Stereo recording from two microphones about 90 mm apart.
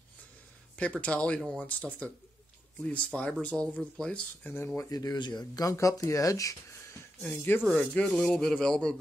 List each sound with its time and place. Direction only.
0.7 s speech: 15° left (ahead or behind); by 7.0 s 40° left (ahead or behind)
7.2 s speech: 20° left (ahead or behind)